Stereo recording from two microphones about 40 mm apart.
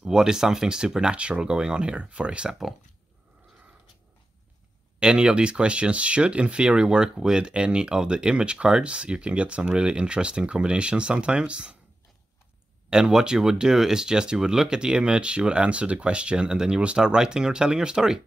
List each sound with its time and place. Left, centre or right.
0.0 s speech: centre
5.0 s speech: right
12.9 s speech: centre